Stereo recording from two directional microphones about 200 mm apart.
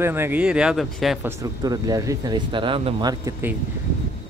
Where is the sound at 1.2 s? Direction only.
15° right (ahead or behind).